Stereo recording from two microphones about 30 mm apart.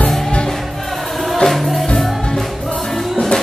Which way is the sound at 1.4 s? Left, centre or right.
Centre.